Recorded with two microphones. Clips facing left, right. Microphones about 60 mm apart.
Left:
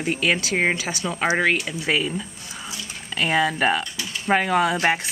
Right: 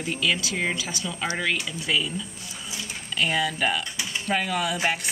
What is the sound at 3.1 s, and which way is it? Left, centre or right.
A woman's voice, left.